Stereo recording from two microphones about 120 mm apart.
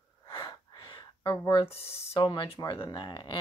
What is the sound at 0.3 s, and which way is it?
Gasp, 45° left (ahead or behind).